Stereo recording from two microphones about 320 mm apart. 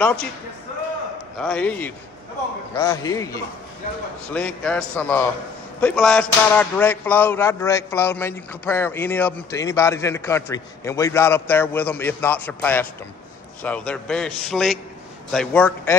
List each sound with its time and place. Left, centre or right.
0.0 s a man's voice: centre
1.4 s a man's voice: centre